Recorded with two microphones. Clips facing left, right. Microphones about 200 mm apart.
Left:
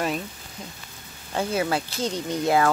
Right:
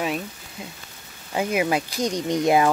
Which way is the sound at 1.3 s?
15° right (ahead or behind).